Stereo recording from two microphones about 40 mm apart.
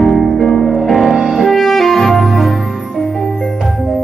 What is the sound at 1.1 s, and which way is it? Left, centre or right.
Music, centre.